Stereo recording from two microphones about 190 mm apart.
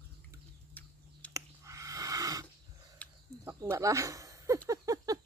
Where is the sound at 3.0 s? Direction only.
5° left (ahead or behind).